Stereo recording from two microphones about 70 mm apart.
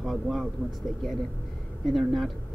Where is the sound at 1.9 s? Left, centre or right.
Centre.